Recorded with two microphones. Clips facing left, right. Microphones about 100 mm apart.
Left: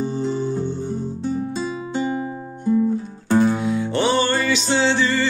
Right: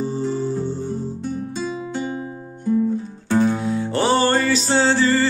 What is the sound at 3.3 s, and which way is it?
Music, 10° left (ahead or behind).